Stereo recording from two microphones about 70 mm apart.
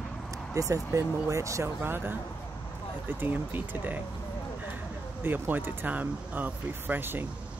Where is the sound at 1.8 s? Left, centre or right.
Right.